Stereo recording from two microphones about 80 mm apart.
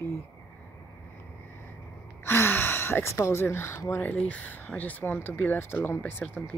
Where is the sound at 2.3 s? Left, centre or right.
Left.